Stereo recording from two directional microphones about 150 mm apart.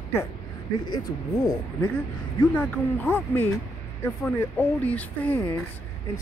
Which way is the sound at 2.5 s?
10° left (ahead or behind).